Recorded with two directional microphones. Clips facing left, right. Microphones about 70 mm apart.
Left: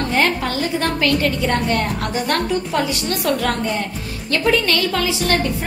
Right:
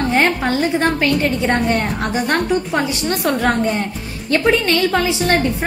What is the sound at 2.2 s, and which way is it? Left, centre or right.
A woman's voice, right.